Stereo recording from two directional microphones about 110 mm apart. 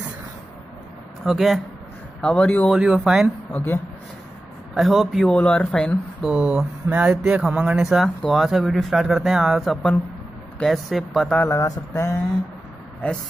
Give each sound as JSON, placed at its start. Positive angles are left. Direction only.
{"t": 1.2, "sound": "speech", "side_deg": 0}
{"t": 2.2, "sound": "speech", "side_deg": 10}
{"t": 2.7, "sound": "speech", "side_deg": -10}
{"t": 3.5, "sound": "speech", "side_deg": 20}
{"t": 4.7, "sound": "speech", "side_deg": 0}
{"t": 5.2, "sound": "speech", "side_deg": 10}
{"t": 6.2, "sound": "speech", "side_deg": -10}
{"t": 11.4, "sound": "speech", "side_deg": 25}